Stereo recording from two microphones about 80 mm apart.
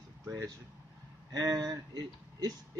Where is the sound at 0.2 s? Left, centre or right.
Right.